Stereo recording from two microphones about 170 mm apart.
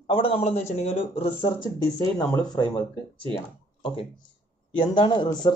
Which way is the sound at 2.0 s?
20° left (ahead or behind).